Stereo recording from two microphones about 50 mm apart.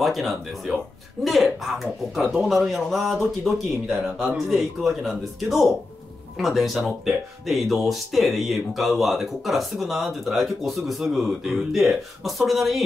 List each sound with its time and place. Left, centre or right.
0.0 s speech: centre
4.0 s speech: centre
4.5 s speech: centre